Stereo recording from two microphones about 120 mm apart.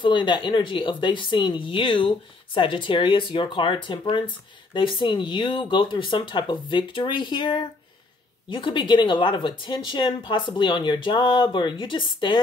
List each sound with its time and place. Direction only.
0.0 s speech: 40° left (ahead or behind)